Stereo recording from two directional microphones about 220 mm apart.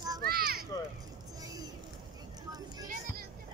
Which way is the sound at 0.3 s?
45° right (ahead or behind).